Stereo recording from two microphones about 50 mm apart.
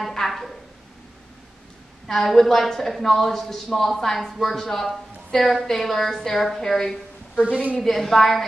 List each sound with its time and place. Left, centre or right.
0.0 s speech: centre
2.0 s a woman's voice: centre
7.3 s a woman's voice: right
7.7 s a woman's voice: centre